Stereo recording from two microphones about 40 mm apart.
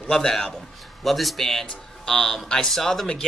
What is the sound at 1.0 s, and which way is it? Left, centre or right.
Speech, centre.